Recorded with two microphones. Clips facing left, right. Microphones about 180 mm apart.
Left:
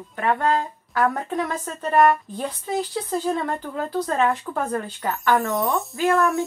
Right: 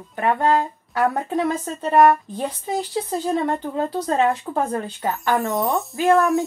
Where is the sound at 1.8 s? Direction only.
20° right (ahead or behind).